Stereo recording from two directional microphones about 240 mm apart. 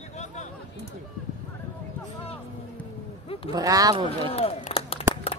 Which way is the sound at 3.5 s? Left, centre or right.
Centre.